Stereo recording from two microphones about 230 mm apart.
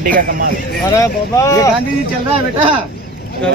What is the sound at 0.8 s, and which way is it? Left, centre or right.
Speech, centre.